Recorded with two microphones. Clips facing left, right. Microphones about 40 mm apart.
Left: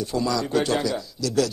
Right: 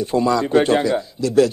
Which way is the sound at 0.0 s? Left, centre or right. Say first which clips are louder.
Right 7 dB; right.